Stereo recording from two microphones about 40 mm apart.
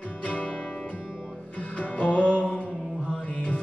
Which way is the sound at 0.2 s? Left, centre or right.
Left.